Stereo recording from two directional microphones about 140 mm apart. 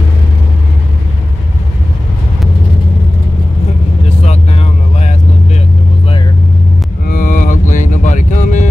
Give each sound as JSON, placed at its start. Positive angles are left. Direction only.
{"t": 4.3, "sound": "vehicle", "side_deg": 50}
{"t": 7.1, "sound": "music", "side_deg": 75}